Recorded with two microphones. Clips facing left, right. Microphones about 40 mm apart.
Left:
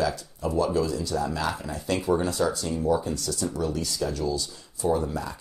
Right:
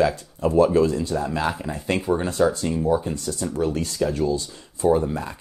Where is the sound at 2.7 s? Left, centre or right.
Right.